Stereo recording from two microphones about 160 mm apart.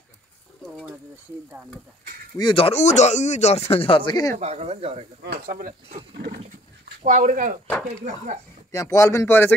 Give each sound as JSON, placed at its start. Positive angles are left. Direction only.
{"t": 2.3, "sound": "speech", "side_deg": 30}
{"t": 4.4, "sound": "speech", "side_deg": -40}
{"t": 5.2, "sound": "speech", "side_deg": -75}
{"t": 6.1, "sound": "wild animals", "side_deg": -65}
{"t": 7.0, "sound": "speech", "side_deg": -50}
{"t": 8.7, "sound": "speech", "side_deg": 20}